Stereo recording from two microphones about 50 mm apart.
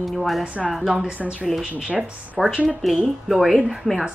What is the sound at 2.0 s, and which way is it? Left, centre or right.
A woman's voice, centre.